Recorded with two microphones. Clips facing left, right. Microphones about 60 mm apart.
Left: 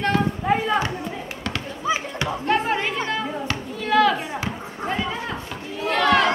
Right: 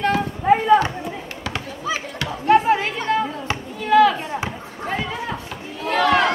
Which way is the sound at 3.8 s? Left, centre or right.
Centre.